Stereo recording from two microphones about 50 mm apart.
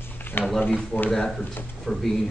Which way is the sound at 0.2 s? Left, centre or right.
Left.